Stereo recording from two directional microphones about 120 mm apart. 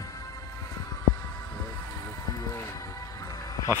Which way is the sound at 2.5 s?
25° left (ahead or behind).